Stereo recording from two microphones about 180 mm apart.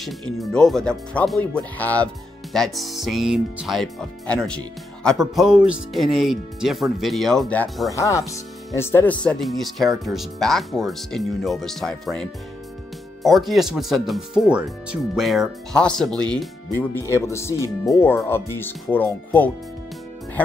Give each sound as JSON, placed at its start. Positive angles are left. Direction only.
{"t": 0.0, "sound": "speech", "side_deg": 0}
{"t": 7.9, "sound": "speech", "side_deg": 15}